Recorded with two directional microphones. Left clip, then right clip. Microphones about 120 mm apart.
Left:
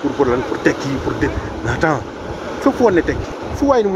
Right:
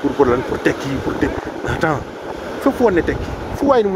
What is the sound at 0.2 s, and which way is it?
Speech, 50° right (ahead or behind).